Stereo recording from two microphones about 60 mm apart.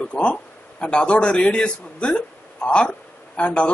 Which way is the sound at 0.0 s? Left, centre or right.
Centre.